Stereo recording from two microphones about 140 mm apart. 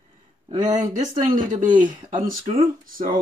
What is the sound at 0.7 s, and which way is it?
Speech, 65° right (ahead or behind).